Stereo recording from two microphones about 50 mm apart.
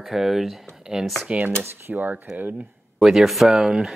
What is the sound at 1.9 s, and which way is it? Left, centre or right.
Speech, right.